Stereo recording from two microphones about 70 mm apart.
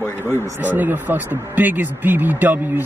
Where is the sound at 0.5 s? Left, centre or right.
Right.